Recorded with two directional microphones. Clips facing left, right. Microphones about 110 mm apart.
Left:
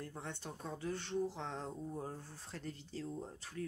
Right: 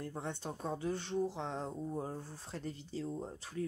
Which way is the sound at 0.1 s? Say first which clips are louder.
Right 5 dB; 25° right (ahead or behind).